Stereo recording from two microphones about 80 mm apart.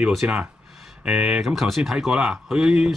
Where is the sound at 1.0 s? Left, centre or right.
Centre.